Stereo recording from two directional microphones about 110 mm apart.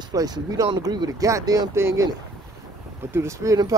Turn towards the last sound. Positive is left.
turn(degrees=-30)  # may be behind; listen again after turning